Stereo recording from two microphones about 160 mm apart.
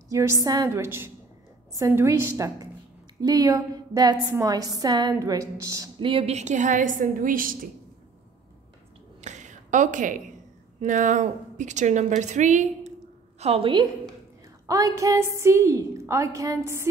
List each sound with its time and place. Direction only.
0.1 s a woman's voice: 20° right (ahead or behind)
5.9 s a woman's voice: 35° right (ahead or behind); by 7.5 s 60° right (ahead or behind)
9.2 s a sound: 50° right (ahead or behind)
10.8 s a woman's voice: 50° right (ahead or behind)
13.4 s a woman's voice: 35° right (ahead or behind)
14.7 s a woman's voice: 20° right (ahead or behind)